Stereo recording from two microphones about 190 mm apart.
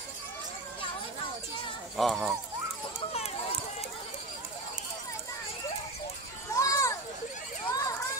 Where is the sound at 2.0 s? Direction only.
Centre (ahead or behind).